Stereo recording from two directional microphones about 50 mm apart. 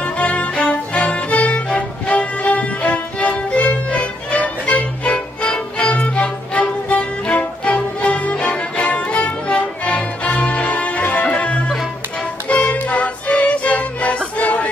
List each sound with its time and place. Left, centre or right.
0.0 s music: left